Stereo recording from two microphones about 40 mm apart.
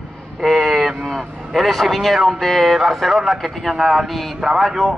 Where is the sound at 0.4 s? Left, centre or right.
Centre.